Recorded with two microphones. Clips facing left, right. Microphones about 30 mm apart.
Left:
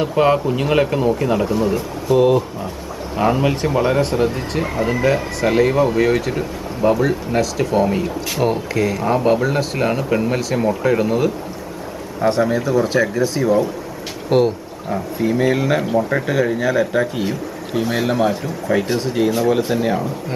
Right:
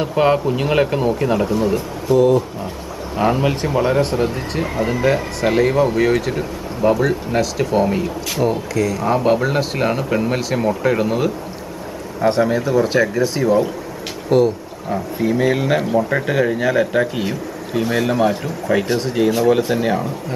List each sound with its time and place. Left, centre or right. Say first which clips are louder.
0.0 s speech: even; centre
2.1 s speech: even; left
3.2 s speech: even; centre
8.4 s speech: even; centre
9.0 s speech: even; centre
14.3 s speech: right 1 dB; left
14.9 s speech: even; centre
17.8 s speech: right 1 dB; centre